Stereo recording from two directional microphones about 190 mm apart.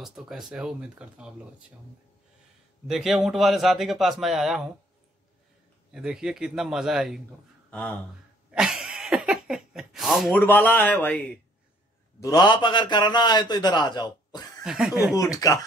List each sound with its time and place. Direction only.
0.0 s a man's voice: centre (ahead or behind)
2.9 s a man's voice: centre (ahead or behind)
5.9 s a man's voice: 5° right (ahead or behind)
8.5 s a sound: 5° right (ahead or behind)
10.4 s a man's voice: 10° left (ahead or behind)
12.2 s a man's voice: 20° left (ahead or behind)
14.6 s speech: 5° right (ahead or behind)
15.1 s a man's voice: 20° left (ahead or behind)